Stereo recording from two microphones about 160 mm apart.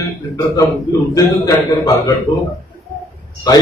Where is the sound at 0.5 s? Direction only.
20° left (ahead or behind).